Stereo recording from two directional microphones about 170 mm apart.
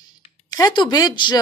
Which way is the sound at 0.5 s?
25° left (ahead or behind).